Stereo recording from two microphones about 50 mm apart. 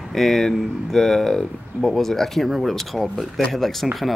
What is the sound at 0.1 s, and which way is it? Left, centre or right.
Speech, centre.